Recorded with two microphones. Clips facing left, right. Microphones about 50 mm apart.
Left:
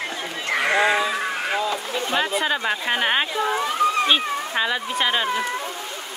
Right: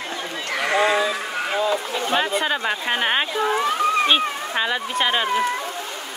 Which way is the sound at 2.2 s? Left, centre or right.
Centre.